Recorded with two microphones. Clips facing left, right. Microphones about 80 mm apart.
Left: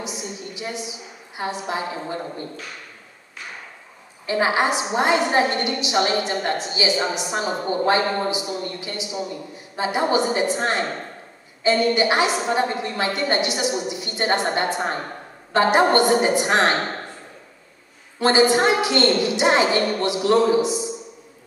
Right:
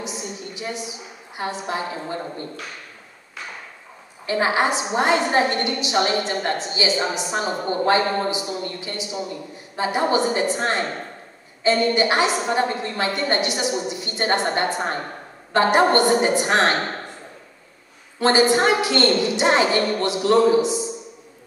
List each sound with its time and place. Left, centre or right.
0.0 s a sound: centre
4.3 s a woman's voice: centre
18.2 s a woman's voice: centre